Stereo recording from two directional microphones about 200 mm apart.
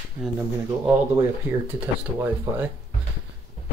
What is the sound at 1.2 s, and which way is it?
Speech, 10° right (ahead or behind).